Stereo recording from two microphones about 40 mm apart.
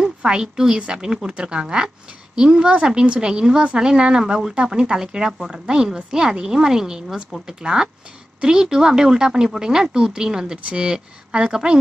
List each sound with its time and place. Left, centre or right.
0.2 s a woman's voice: centre